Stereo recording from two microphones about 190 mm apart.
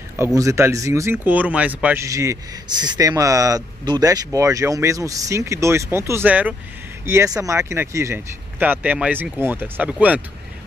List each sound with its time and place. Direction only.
0.2 s speech: 15° right (ahead or behind)